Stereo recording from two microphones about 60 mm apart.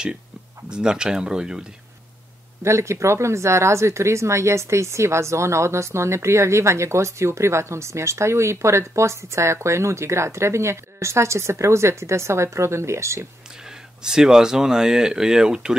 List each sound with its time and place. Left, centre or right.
0.7 s speech: centre
2.6 s speech: right
13.7 s speech: centre